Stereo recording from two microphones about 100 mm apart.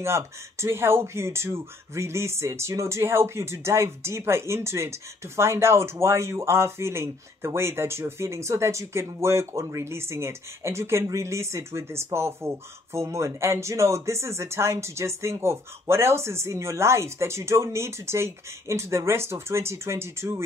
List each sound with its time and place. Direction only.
0.0 s speech: 25° right (ahead or behind)